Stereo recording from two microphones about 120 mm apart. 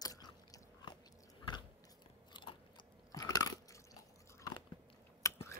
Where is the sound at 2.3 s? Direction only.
40° left (ahead or behind).